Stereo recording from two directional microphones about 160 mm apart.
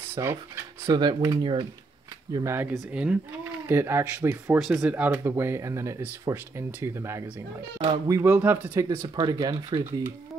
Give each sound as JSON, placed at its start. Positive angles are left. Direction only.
{"t": 0.1, "sound": "speech", "side_deg": -15}
{"t": 0.8, "sound": "speech", "side_deg": -25}
{"t": 2.3, "sound": "speech", "side_deg": -15}